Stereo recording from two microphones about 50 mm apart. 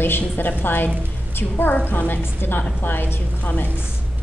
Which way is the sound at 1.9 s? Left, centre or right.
Left.